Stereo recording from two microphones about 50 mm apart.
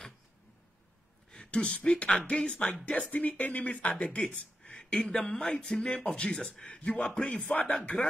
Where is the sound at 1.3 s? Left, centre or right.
Centre.